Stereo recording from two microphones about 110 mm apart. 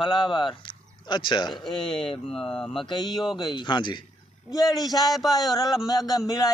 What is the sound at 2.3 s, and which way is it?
Speech, 5° left (ahead or behind).